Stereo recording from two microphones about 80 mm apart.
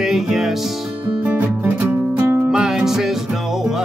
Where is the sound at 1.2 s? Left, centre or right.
Right.